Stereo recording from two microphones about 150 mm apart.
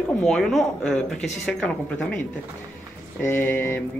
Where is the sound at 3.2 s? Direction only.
15° left (ahead or behind).